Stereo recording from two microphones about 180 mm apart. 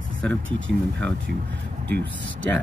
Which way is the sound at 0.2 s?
5° left (ahead or behind).